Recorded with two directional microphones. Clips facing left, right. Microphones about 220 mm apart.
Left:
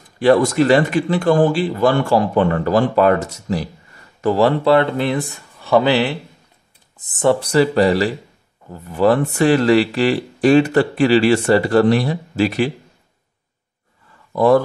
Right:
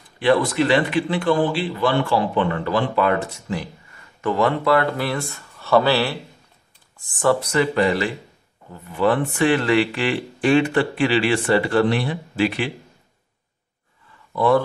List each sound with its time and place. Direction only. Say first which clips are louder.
0.2 s speech: left 5 dB; 45° left (ahead or behind)
14.3 s speech: left 4 dB; 40° left (ahead or behind)